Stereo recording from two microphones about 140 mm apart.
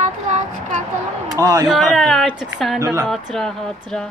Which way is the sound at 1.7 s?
Centre (ahead or behind).